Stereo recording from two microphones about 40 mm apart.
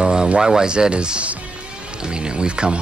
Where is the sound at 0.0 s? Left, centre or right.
Centre.